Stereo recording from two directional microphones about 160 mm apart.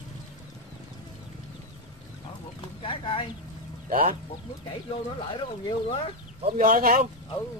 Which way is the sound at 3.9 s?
60° right (ahead or behind).